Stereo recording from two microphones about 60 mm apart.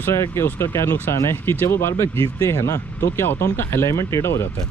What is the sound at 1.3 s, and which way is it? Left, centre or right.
Speech, left.